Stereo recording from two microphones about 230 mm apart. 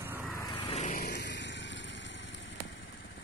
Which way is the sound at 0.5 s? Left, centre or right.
Centre.